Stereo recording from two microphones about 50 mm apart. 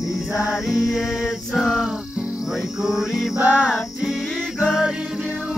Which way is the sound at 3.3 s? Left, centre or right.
Right.